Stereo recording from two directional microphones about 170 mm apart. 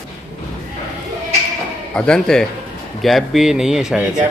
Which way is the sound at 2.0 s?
5° left (ahead or behind).